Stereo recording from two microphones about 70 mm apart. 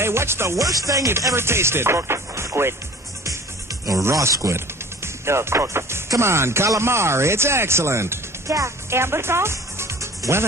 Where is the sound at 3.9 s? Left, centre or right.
Right.